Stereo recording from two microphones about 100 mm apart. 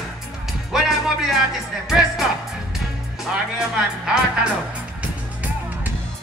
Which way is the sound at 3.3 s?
10° right (ahead or behind).